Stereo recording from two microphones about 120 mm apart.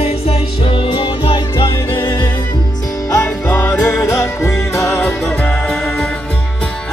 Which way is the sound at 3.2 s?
20° left (ahead or behind).